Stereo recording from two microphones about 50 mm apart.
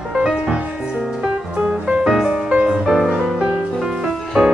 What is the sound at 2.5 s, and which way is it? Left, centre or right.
Music, right.